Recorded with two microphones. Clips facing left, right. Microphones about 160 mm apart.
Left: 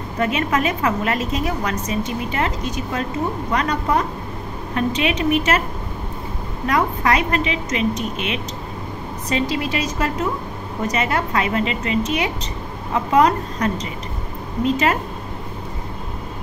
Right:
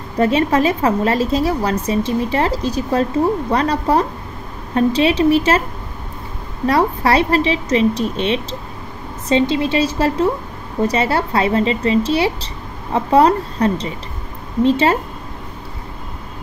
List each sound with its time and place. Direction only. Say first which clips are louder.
0.2 s a woman's voice: right 6 dB; 30° right (ahead or behind)
6.7 s a woman's voice: right 4 dB; 35° right (ahead or behind)